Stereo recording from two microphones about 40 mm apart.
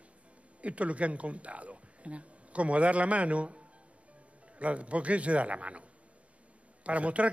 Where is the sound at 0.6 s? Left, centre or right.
Right.